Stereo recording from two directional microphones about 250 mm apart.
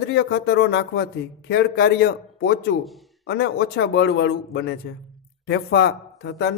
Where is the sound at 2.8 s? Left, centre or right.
Centre.